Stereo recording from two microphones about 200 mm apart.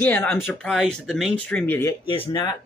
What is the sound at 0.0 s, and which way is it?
Speech, 10° left (ahead or behind).